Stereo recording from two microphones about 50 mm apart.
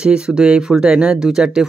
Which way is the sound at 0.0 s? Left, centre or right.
Centre.